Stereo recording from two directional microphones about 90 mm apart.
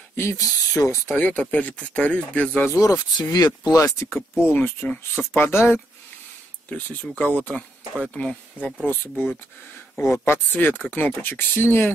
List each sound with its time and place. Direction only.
0.1 s speech: 30° left (ahead or behind)
1.1 s speech: 15° left (ahead or behind)
2.6 s speech: 35° left (ahead or behind)
3.3 s speech: 45° left (ahead or behind)
4.1 s speech: 20° left (ahead or behind)
7.0 s speech: 15° left (ahead or behind)